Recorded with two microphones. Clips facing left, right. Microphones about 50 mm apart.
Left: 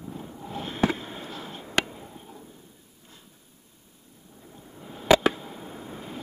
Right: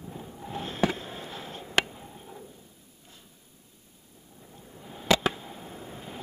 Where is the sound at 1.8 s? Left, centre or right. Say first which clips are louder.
Left 2 dB; centre.